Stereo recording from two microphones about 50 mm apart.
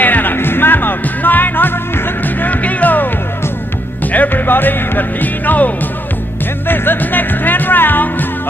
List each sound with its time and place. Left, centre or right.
0.0 s music: left
6.7 s music: left